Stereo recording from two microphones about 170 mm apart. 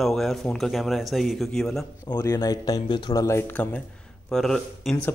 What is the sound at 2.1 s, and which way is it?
Speech, 15° left (ahead or behind).